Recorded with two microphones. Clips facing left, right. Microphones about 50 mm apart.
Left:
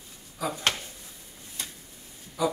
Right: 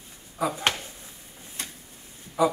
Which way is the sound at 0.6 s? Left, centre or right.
Right.